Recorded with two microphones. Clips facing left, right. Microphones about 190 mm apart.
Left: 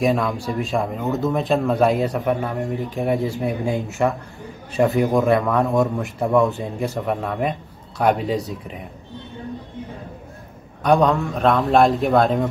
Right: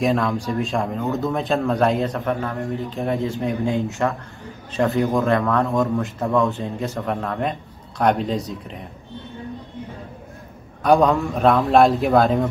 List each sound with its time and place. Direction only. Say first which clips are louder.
0.0 s a man's voice: even; centre (ahead or behind)
3.6 s a man's voice: right 2 dB; centre (ahead or behind)
4.7 s speech: left 2 dB; 15° left (ahead or behind)
7.0 s a man's voice: left 1 dB; 5° left (ahead or behind)
10.8 s a man's voice: right 1 dB; centre (ahead or behind)